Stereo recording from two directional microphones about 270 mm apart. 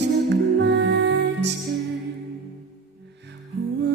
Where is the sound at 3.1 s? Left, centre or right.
Right.